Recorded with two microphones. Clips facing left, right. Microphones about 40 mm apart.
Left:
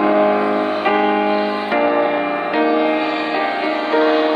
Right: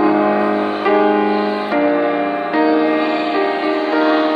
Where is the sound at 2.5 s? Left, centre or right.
Left.